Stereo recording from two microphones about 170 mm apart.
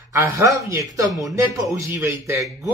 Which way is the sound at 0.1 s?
15° right (ahead or behind).